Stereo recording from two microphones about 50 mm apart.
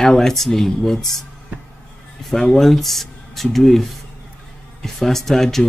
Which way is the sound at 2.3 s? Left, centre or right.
Centre.